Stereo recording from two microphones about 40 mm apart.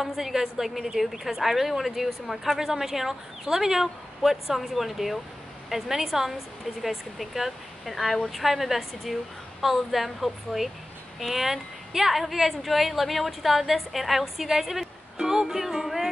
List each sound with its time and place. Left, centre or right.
0.0 s a woman's voice: centre
15.1 s music: centre